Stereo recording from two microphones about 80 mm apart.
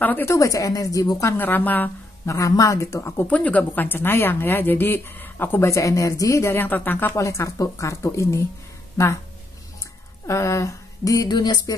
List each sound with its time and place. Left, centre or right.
0.0 s a woman's voice: left
0.3 s speech: left
1.2 s a woman's voice: left
2.2 s speech: left
3.3 s a woman's voice: centre; by 6.5 s left
6.5 s a woman's voice: left
7.2 s speech: left
10.2 s speech: left